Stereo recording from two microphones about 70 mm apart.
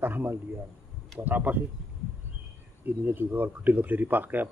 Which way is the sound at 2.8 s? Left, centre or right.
Right.